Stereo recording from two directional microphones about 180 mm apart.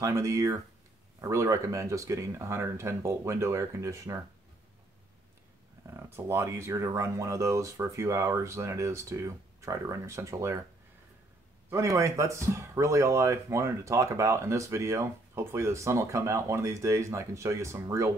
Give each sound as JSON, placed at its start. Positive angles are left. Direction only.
{"t": 0.0, "sound": "speech", "side_deg": -15}
{"t": 5.9, "sound": "speech", "side_deg": -15}
{"t": 11.7, "sound": "speech", "side_deg": -15}